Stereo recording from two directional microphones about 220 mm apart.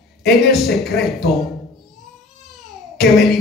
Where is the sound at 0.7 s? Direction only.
45° left (ahead or behind).